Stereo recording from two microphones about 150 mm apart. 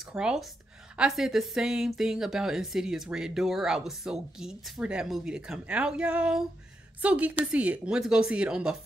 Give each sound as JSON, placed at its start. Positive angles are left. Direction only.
{"t": 0.0, "sound": "a woman's voice", "side_deg": -5}